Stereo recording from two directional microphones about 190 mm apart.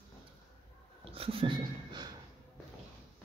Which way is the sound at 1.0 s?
30° right (ahead or behind).